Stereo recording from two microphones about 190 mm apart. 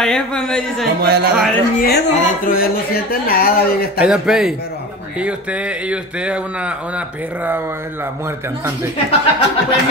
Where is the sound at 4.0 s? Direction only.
5° right (ahead or behind).